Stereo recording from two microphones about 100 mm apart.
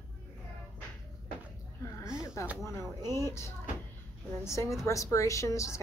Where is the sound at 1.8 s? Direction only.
30° left (ahead or behind).